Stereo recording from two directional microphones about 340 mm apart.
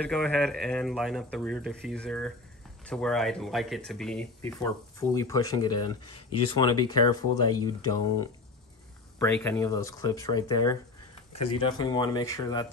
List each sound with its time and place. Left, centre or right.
0.0 s speech: centre
11.8 s speech: centre